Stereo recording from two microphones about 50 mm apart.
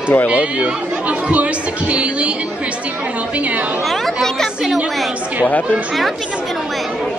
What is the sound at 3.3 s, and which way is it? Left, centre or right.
Chatter, right.